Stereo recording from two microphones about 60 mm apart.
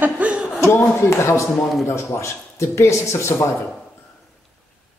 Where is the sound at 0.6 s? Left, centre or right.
Left.